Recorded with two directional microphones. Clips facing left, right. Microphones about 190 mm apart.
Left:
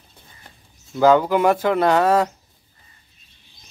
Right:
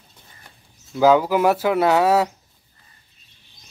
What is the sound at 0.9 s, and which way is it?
Speech, 5° right (ahead or behind).